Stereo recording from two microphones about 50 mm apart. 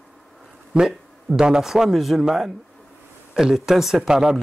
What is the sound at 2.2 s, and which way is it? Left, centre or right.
Speech, centre.